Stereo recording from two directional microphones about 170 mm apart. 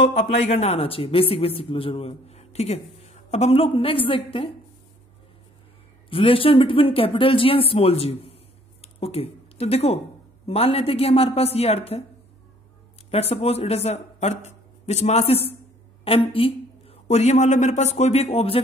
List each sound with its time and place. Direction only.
0.0 s speech: 40° left (ahead or behind)
6.0 s speech: 35° left (ahead or behind)
13.1 s a man's voice: 35° left (ahead or behind)